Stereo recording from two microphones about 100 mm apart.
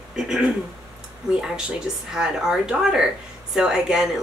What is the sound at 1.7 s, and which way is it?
A woman's voice, 5° right (ahead or behind).